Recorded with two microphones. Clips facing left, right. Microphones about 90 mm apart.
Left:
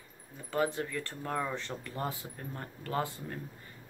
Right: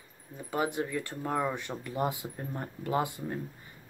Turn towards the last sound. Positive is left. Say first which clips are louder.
# right 4 dB
turn(degrees=-15)  # may be behind; listen again after turning